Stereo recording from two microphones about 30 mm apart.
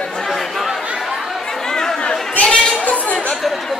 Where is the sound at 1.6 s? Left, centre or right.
Left.